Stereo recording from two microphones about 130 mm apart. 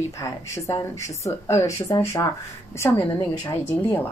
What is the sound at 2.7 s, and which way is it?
Speech, 20° left (ahead or behind).